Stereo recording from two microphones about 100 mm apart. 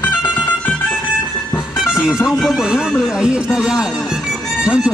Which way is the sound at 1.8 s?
5° right (ahead or behind).